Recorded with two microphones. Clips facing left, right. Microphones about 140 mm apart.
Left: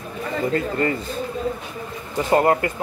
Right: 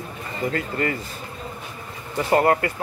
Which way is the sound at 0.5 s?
30° left (ahead or behind).